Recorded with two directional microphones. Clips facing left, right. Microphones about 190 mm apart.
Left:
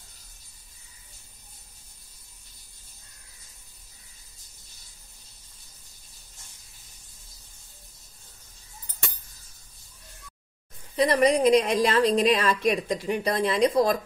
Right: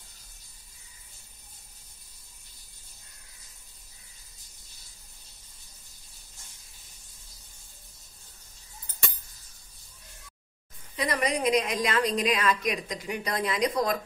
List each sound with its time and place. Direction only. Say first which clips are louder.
11.0 s a woman's voice: left 8 dB; 35° left (ahead or behind)